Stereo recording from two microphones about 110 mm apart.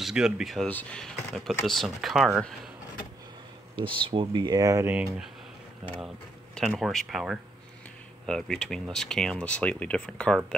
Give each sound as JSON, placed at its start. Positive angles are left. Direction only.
{"t": 0.0, "sound": "speech", "side_deg": -5}
{"t": 0.7, "sound": "speech", "side_deg": 15}
{"t": 1.0, "sound": "speech", "side_deg": 0}
{"t": 3.7, "sound": "speech", "side_deg": -50}
{"t": 6.8, "sound": "speech", "side_deg": 0}